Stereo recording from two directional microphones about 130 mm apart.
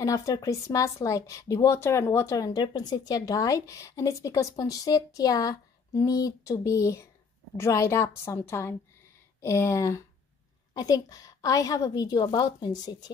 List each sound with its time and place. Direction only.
0.0 s a woman's voice: 25° left (ahead or behind)